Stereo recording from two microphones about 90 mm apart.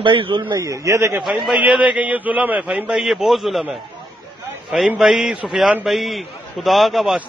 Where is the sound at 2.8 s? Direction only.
5° right (ahead or behind).